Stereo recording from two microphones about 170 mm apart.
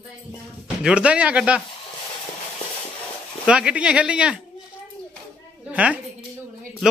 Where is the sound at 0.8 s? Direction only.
5° right (ahead or behind).